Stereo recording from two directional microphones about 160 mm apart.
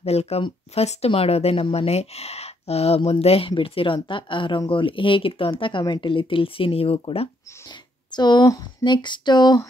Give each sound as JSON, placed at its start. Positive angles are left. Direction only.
{"t": 0.0, "sound": "speech", "side_deg": 40}